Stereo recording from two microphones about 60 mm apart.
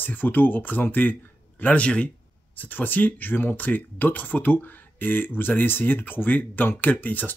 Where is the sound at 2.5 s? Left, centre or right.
Left.